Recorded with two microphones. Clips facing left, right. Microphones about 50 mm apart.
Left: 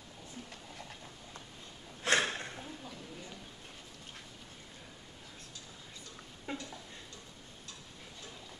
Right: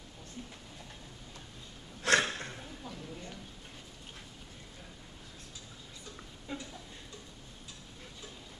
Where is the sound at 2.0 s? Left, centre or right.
Centre.